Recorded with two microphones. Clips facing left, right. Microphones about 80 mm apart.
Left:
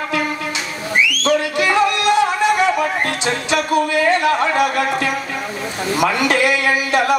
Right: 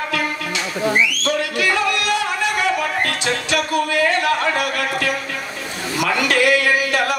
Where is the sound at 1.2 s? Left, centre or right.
Left.